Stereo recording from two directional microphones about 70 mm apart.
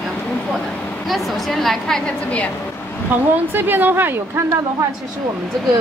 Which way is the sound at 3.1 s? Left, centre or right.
Right.